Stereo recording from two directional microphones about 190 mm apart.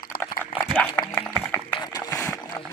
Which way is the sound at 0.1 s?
50° left (ahead or behind).